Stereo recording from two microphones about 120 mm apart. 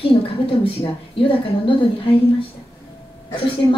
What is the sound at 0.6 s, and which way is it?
A woman's voice, 45° left (ahead or behind).